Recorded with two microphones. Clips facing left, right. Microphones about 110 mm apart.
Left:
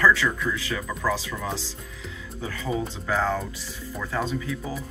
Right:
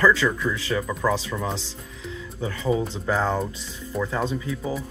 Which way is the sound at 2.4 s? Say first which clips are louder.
Right 4 dB; 30° right (ahead or behind).